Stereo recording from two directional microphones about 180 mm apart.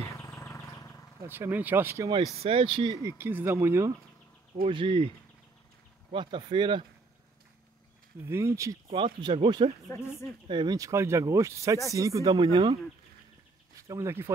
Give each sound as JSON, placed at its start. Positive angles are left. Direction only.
{"t": 0.0, "sound": "bird", "side_deg": 15}
{"t": 1.2, "sound": "speech", "side_deg": -10}
{"t": 2.4, "sound": "speech", "side_deg": -30}
{"t": 4.6, "sound": "speech", "side_deg": -30}
{"t": 6.1, "sound": "speech", "side_deg": -25}
{"t": 8.3, "sound": "speech", "side_deg": -15}
{"t": 8.8, "sound": "speech", "side_deg": -30}
{"t": 9.8, "sound": "speech", "side_deg": 15}
{"t": 10.5, "sound": "speech", "side_deg": -25}
{"t": 13.8, "sound": "speech", "side_deg": -15}